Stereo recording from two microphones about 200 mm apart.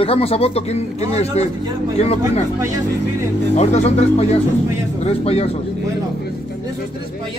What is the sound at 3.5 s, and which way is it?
Speech, 35° left (ahead or behind).